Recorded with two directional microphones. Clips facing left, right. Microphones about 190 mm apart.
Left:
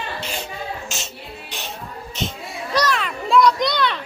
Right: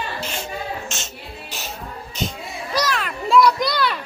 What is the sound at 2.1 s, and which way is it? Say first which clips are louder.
Children playing: even; 5° right (ahead or behind).